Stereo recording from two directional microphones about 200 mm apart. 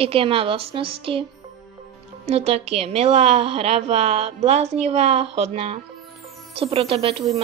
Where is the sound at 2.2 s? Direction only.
30° right (ahead or behind).